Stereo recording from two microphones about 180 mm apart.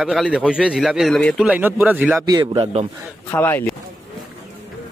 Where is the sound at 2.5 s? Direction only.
30° right (ahead or behind).